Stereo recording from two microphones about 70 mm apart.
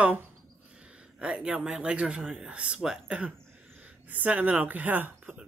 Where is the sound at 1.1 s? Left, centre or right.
Centre.